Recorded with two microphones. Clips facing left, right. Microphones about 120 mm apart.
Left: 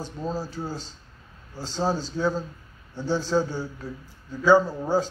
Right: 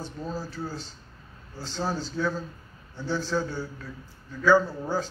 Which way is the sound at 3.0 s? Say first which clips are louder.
Left 4 dB; 15° left (ahead or behind).